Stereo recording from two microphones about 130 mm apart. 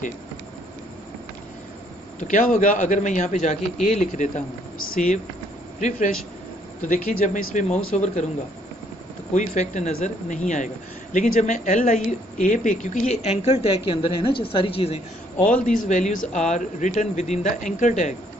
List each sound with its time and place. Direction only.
2.1 s a woman's voice: 75° left (ahead or behind)
6.8 s a woman's voice: 80° left; by 8.3 s 65° left (ahead or behind)
9.3 s a woman's voice: 70° left (ahead or behind); by 15.0 s 45° left (ahead or behind)
15.6 s speech: 85° left
16.3 s speech: 65° left (ahead or behind)